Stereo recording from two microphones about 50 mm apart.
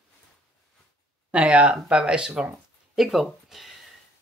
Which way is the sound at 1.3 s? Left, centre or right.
Right.